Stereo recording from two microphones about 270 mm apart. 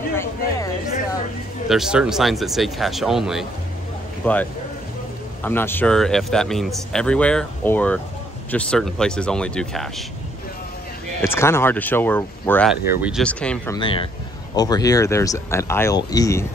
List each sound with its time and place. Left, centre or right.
1.7 s speech: centre
11.1 s speech: centre
13.7 s speech: centre